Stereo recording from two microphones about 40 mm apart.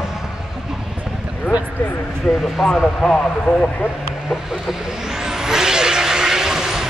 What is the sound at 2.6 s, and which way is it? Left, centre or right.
Speech, left.